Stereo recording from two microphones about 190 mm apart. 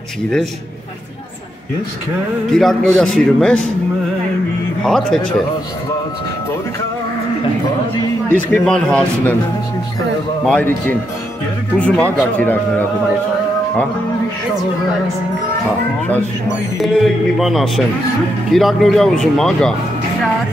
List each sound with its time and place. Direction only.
2.5 s speech: centre (ahead or behind)
4.8 s speech: centre (ahead or behind)
8.3 s speech: 5° left (ahead or behind)
10.4 s speech: 10° left (ahead or behind)
16.8 s speech: centre (ahead or behind)